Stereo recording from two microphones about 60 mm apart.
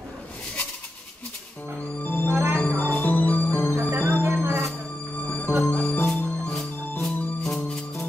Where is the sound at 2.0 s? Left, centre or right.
Left.